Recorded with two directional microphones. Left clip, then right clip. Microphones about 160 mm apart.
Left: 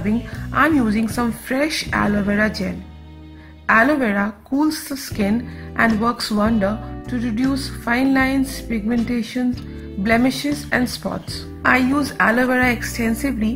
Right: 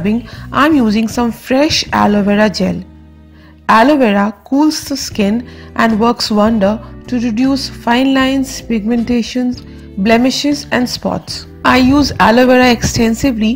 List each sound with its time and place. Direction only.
0.0 s speech: 35° right (ahead or behind)